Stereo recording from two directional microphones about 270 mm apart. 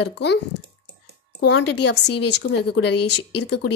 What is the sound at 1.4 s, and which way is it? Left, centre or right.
Speech, left.